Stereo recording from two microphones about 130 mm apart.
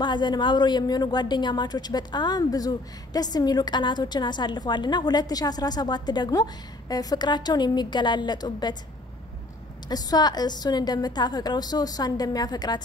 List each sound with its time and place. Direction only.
0.0 s a woman's voice: 35° left (ahead or behind)
9.8 s a woman's voice: 30° left (ahead or behind)